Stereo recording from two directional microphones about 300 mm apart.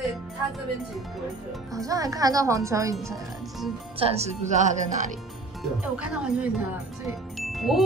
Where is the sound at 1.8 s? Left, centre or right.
Centre.